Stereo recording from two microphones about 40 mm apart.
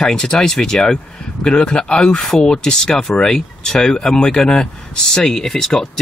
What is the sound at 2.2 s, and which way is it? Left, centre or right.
Speech, centre.